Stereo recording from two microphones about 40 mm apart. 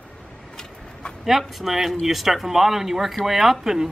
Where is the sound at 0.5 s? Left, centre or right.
Centre.